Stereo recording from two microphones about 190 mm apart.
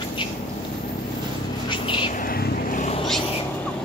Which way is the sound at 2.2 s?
50° left (ahead or behind).